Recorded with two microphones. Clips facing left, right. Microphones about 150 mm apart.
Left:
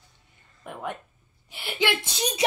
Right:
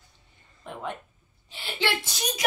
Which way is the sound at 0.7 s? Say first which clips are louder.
Left 1 dB; 10° left (ahead or behind).